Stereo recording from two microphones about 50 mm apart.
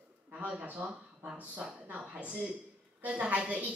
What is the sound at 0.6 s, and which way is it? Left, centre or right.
A woman's voice, right.